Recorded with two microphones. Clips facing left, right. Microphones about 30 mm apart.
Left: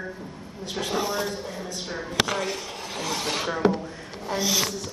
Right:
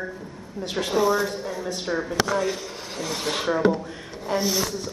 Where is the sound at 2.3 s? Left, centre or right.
Left.